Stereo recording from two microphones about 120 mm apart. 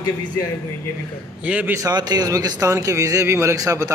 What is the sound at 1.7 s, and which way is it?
A man's voice, 30° right (ahead or behind).